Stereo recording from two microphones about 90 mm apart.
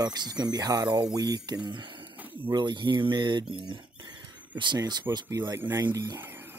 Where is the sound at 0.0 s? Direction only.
50° right (ahead or behind).